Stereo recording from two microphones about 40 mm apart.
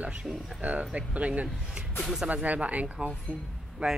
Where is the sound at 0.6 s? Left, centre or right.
Right.